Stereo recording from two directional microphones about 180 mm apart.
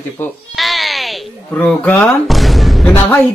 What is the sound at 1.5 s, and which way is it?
Speech, 10° left (ahead or behind).